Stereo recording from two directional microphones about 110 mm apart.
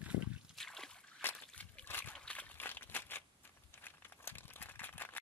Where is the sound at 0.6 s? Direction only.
5° left (ahead or behind).